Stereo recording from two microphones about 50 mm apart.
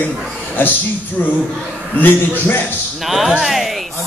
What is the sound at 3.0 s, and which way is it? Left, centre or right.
Speech, centre.